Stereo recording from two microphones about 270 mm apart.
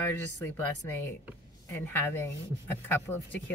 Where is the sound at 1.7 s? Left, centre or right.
Centre.